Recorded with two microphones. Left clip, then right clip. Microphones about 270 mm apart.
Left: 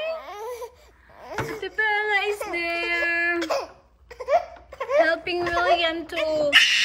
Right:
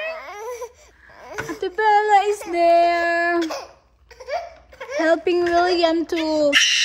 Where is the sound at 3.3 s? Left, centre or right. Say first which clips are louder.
Right 2 dB; left.